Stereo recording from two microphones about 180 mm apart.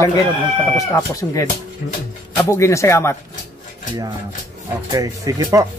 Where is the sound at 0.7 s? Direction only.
20° left (ahead or behind).